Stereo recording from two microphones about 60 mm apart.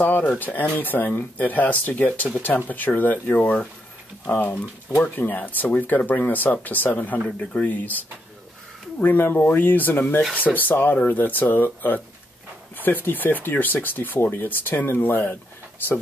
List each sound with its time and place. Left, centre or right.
0.3 s speech: left